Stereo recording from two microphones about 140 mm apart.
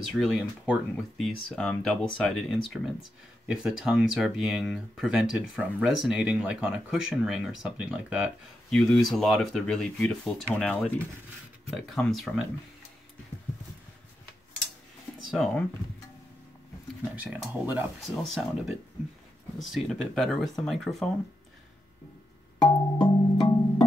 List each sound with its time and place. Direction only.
0.1 s speech: centre (ahead or behind)
15.3 s speech: 5° left (ahead or behind)
17.1 s speech: 10° right (ahead or behind)
22.6 s music: 35° left (ahead or behind)